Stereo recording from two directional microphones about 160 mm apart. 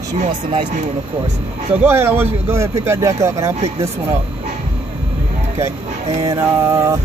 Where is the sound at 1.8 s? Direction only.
15° right (ahead or behind).